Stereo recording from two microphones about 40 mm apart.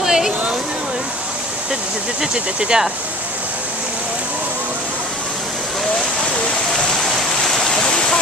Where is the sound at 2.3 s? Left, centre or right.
Centre.